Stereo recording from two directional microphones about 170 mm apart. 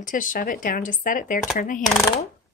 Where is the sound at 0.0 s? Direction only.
50° left (ahead or behind).